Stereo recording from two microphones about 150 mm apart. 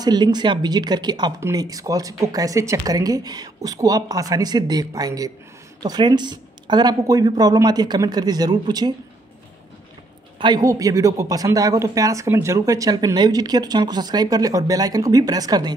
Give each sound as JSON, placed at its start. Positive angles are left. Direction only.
{"t": 0.0, "sound": "speech", "side_deg": -30}
{"t": 10.4, "sound": "speech", "side_deg": -25}